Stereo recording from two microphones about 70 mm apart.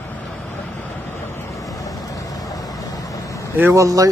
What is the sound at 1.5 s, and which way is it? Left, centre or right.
Vehicle, left.